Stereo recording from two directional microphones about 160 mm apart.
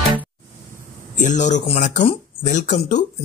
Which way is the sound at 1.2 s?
50° left (ahead or behind).